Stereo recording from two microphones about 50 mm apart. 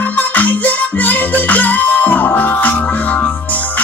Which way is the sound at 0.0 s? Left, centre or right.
Left.